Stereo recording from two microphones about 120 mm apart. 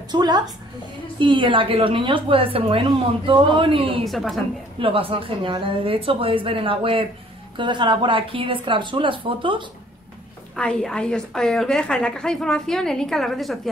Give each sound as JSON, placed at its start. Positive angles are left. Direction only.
{"t": 0.1, "sound": "a woman's voice", "side_deg": -35}
{"t": 4.0, "sound": "a woman's voice", "side_deg": 0}
{"t": 4.7, "sound": "a woman's voice", "side_deg": -50}
{"t": 10.5, "sound": "a woman's voice", "side_deg": 5}